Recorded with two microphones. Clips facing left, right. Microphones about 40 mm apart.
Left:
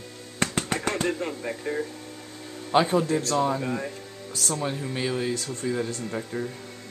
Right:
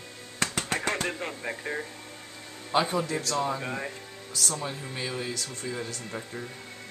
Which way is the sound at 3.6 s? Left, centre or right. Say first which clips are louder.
Left 4 dB; centre.